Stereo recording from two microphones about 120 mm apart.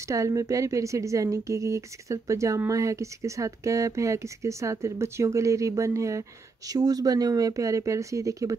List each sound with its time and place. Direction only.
0.1 s speech: 30° right (ahead or behind)